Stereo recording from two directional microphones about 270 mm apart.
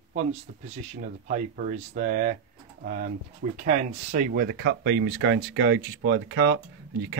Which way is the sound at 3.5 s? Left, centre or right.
Right.